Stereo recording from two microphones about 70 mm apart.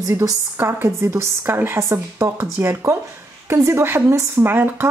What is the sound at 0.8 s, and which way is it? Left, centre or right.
Speech, right.